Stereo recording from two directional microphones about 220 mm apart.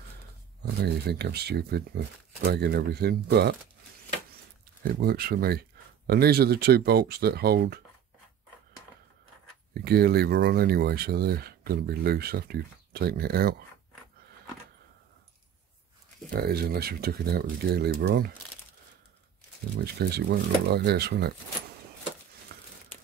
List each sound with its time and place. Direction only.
0.8 s speech: 50° right (ahead or behind)
5.0 s speech: 45° right (ahead or behind)
9.8 s speech: 45° right (ahead or behind)
16.3 s speech: 45° right (ahead or behind)
20.0 s speech: 45° right (ahead or behind)
22.5 s a sound: 45° right (ahead or behind)